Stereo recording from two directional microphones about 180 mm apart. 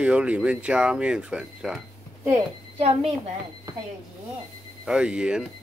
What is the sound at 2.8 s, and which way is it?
Speech, 35° right (ahead or behind).